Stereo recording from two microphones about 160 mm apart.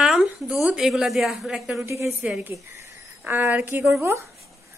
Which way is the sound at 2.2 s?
5° right (ahead or behind).